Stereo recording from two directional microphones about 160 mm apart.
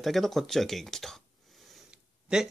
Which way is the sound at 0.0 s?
Centre (ahead or behind).